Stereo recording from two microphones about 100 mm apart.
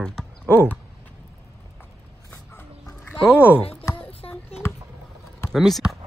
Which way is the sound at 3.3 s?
20° left (ahead or behind).